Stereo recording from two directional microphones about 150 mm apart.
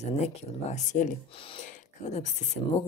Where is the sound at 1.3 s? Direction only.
35° left (ahead or behind).